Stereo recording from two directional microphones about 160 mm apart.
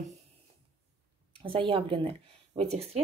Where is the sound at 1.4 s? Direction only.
35° right (ahead or behind).